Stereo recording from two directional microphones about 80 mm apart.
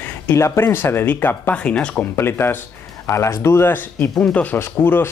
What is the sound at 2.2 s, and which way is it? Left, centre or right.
Speech, left.